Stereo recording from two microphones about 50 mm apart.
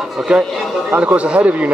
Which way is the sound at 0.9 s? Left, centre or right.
Right.